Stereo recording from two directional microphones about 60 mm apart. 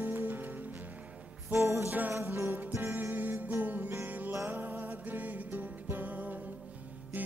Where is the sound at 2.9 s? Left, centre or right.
Right.